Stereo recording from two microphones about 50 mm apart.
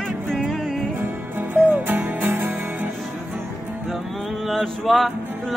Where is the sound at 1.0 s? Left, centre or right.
Right.